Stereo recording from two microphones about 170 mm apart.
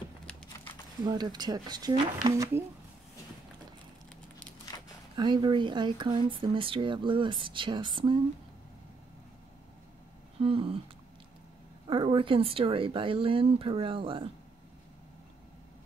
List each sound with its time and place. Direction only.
1.0 s speech: 25° right (ahead or behind)
4.6 s a sound: 25° left (ahead or behind)
5.1 s speech: 25° right (ahead or behind)
10.4 s speech: 35° right (ahead or behind)
11.9 s speech: 30° right (ahead or behind)